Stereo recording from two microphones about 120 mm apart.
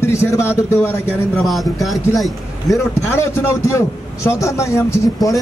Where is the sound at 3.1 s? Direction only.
25° left (ahead or behind).